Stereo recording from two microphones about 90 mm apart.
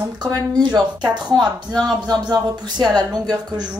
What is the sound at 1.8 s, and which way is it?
Speech, 45° right (ahead or behind).